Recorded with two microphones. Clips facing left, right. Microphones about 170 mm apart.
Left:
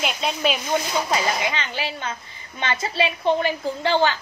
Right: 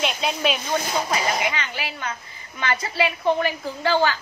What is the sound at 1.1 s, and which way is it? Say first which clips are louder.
A woman's voice: left 1 dB; 25° left (ahead or behind).